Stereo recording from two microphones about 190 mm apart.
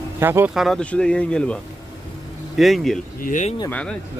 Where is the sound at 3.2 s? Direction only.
40° left (ahead or behind).